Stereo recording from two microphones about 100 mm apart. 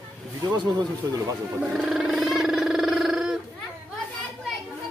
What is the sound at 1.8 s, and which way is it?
Wild animals, 5° right (ahead or behind).